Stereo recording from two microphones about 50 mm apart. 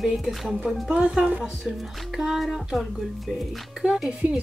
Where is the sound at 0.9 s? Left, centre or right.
Centre.